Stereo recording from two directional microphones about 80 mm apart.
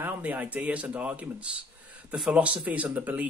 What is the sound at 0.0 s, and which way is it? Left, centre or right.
Speech, right.